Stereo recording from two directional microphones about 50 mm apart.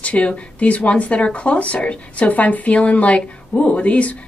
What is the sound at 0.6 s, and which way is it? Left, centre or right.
Speech, left.